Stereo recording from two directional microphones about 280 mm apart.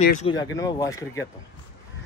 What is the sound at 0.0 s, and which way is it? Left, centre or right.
Speech, left.